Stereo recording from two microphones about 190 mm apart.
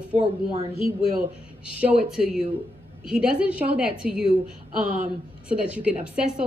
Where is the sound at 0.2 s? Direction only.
30° right (ahead or behind).